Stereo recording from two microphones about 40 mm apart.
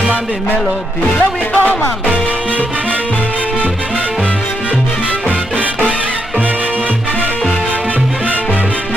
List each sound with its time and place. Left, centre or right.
1.5 s music: left